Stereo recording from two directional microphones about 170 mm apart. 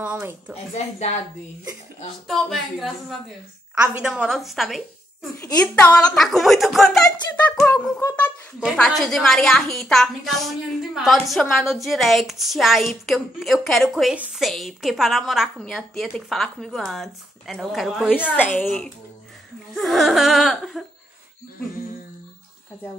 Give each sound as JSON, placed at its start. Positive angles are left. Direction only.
{"t": 0.0, "sound": "a woman's voice", "side_deg": -10}
{"t": 0.7, "sound": "a woman's voice", "side_deg": 40}
{"t": 2.2, "sound": "a woman's voice", "side_deg": 0}
{"t": 5.4, "sound": "a child's voice", "side_deg": 15}
{"t": 5.9, "sound": "a woman's voice", "side_deg": 0}
{"t": 8.5, "sound": "a woman's voice", "side_deg": 0}
{"t": 18.4, "sound": "a child's voice", "side_deg": 10}